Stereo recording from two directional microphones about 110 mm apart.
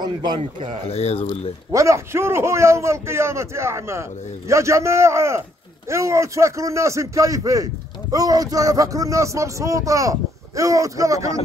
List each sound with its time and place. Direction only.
0.8 s speech: 65° left (ahead or behind)
1.7 s a man's voice: 25° right (ahead or behind)